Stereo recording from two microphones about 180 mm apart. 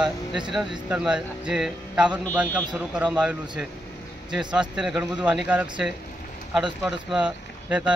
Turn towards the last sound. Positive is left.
turn(degrees=-5)  # may be behind; listen again after turning